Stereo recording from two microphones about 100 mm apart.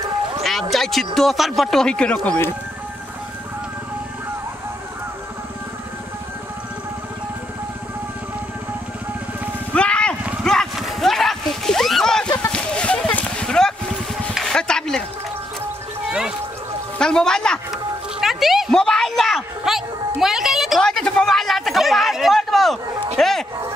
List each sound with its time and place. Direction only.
0.4 s speech: centre (ahead or behind)
2.2 s speech: 20° left (ahead or behind)
9.8 s a sound: 10° left (ahead or behind)
10.4 s horse: 5° left (ahead or behind)
10.8 s splash: centre (ahead or behind)
12.4 s a sound: 10° left (ahead or behind)
16.1 s music: 5° right (ahead or behind)
17.0 s a sound: 5° left (ahead or behind)
23.1 s bow-wow: 5° left (ahead or behind)